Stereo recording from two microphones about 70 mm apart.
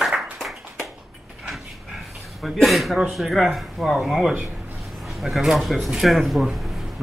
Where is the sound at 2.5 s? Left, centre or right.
Centre.